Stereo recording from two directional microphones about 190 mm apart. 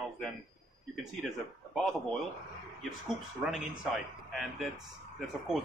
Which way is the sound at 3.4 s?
5° right (ahead or behind).